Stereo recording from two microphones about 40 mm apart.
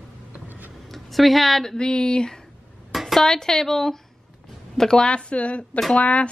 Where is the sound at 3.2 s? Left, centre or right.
Centre.